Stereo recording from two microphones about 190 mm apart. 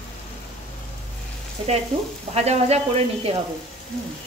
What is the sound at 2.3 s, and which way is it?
Speech, 35° right (ahead or behind).